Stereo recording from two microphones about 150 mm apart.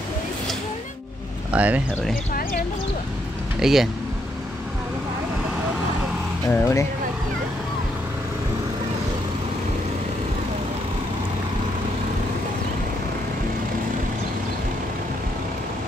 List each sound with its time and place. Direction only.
1.5 s speech: 10° right (ahead or behind)
3.5 s speech: centre (ahead or behind)
6.5 s speech: 20° left (ahead or behind)